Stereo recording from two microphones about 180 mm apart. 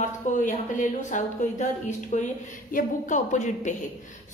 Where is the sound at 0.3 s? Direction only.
45° left (ahead or behind).